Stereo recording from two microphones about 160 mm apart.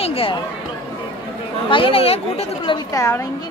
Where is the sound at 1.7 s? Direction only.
35° left (ahead or behind).